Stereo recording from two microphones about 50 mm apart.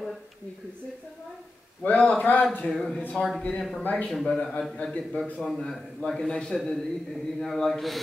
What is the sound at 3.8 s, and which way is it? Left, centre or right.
Speech, left.